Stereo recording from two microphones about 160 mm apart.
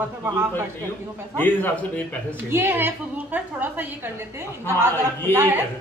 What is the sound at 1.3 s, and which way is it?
Speech, 10° left (ahead or behind).